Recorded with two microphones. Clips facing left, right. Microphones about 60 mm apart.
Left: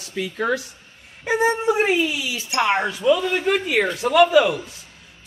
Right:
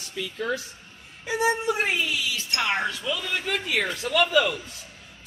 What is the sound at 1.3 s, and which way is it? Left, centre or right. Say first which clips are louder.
Speech: left 7 dB; left.